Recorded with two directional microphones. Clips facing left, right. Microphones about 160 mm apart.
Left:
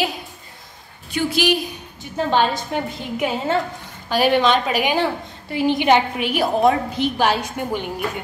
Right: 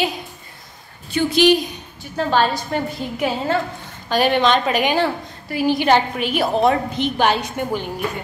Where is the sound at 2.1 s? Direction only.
20° left (ahead or behind).